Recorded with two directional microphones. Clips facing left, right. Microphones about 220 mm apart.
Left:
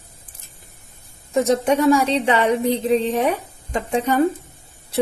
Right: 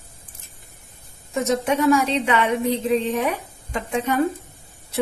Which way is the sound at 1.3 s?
30° left (ahead or behind).